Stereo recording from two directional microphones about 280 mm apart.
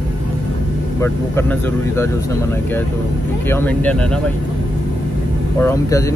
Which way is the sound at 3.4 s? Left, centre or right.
Centre.